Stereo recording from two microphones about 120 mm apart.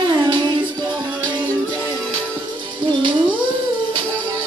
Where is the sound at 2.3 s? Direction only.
45° right (ahead or behind).